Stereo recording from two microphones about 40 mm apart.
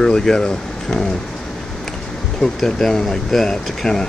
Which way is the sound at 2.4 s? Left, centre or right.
Centre.